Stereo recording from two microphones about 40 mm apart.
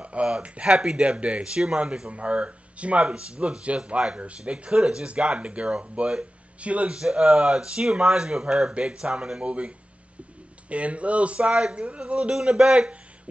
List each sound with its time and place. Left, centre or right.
0.0 s a sound: right
0.4 s speech: right
0.8 s speech: centre
1.1 s speech: right
1.4 s speech: centre
2.0 s speech: right
7.0 s speech: centre
12.4 s speech: centre